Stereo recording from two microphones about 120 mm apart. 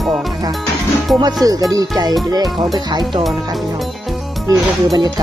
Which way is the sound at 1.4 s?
30° right (ahead or behind).